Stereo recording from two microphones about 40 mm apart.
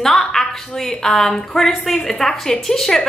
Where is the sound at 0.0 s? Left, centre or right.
Centre.